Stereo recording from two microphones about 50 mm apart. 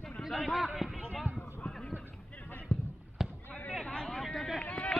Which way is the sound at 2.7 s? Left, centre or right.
Left.